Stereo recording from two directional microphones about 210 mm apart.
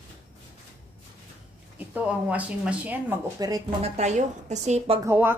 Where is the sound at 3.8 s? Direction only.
35° right (ahead or behind).